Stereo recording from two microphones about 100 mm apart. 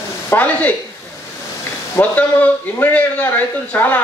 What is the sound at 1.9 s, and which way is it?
Speech, 20° left (ahead or behind).